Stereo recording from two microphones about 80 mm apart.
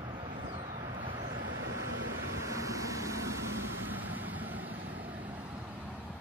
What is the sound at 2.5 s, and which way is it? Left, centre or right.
Vehicle, right.